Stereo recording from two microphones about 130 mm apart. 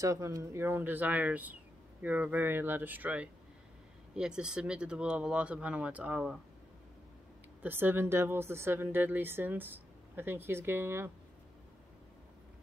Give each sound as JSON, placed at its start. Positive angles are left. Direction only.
{"t": 0.0, "sound": "speech", "side_deg": -25}
{"t": 7.6, "sound": "speech", "side_deg": -15}